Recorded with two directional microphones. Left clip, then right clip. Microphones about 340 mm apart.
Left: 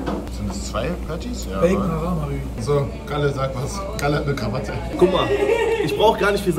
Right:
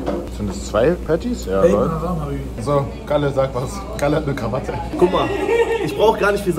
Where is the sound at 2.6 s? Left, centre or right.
Centre.